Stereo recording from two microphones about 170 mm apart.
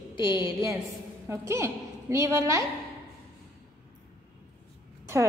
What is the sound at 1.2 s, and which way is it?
A woman's voice, 15° right (ahead or behind).